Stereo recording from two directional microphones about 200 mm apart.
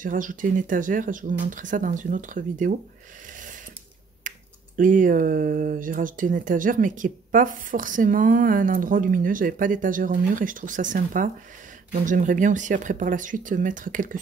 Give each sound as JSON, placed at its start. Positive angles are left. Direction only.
{"t": 0.0, "sound": "speech", "side_deg": -40}
{"t": 4.2, "sound": "finger snapping", "side_deg": -40}
{"t": 4.7, "sound": "speech", "side_deg": -40}